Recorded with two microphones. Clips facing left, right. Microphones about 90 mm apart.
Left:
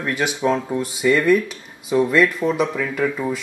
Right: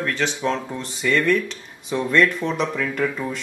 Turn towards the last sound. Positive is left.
turn(degrees=5)  # may be behind; listen again after turning